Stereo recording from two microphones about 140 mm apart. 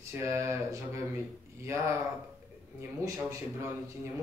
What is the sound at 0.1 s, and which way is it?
Speech, 20° right (ahead or behind).